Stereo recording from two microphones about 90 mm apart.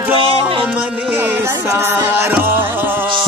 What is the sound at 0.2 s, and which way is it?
Music, 90° right.